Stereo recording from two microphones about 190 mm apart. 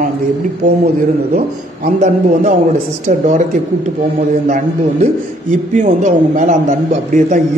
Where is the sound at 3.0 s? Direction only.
35° right (ahead or behind).